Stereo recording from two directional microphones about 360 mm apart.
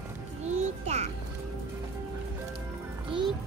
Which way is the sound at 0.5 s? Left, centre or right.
Centre.